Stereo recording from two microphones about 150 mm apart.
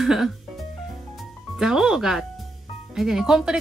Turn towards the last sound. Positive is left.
turn(degrees=-5)  # may be behind; listen again after turning